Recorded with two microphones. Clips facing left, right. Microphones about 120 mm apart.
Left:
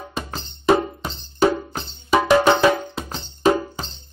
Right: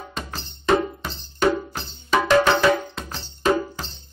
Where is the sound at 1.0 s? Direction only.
20° left (ahead or behind).